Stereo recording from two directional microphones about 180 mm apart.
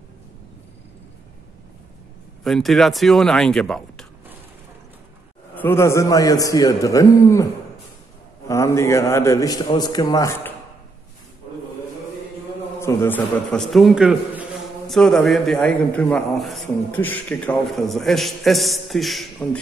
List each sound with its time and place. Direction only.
2.4 s a man's voice: centre (ahead or behind)
5.5 s a man's voice: 10° left (ahead or behind)
8.5 s a man's voice: 15° left (ahead or behind)
12.8 s a man's voice: 10° left (ahead or behind)